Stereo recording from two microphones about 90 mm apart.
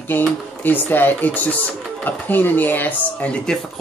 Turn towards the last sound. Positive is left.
turn(degrees=10)  # may be behind; listen again after turning